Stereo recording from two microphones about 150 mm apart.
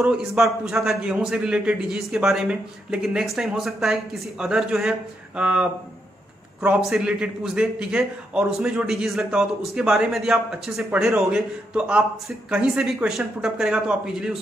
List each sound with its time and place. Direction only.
0.0 s a man's voice: 5° right (ahead or behind)
6.9 s a man's voice: 5° right (ahead or behind)